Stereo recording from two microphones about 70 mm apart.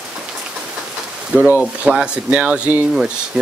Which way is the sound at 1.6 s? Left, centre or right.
Centre.